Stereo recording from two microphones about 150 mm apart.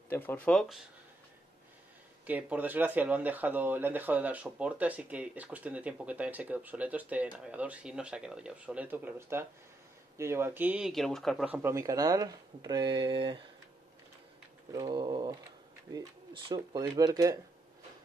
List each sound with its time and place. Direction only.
0.1 s speech: 15° left (ahead or behind)
2.2 s speech: 10° right (ahead or behind)
10.9 s speech: centre (ahead or behind)
11.4 s speech: 15° right (ahead or behind); by 13.4 s 35° right (ahead or behind)
14.7 s speech: 25° right (ahead or behind)